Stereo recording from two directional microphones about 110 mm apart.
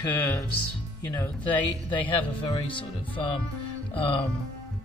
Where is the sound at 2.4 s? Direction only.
50° left (ahead or behind).